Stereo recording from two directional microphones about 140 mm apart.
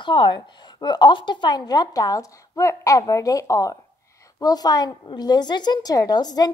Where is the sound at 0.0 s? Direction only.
35° left (ahead or behind).